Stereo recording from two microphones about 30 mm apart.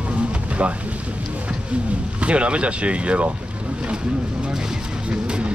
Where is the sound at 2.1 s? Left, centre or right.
Right.